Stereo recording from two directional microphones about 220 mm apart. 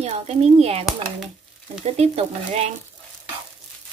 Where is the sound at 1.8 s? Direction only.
30° right (ahead or behind).